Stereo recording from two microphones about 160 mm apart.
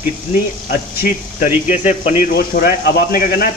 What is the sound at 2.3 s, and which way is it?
Speech, 70° left (ahead or behind).